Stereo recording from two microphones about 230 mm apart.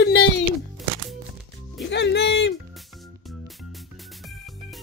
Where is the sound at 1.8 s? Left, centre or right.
Left.